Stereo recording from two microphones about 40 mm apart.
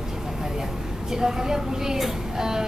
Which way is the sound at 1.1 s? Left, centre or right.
Centre.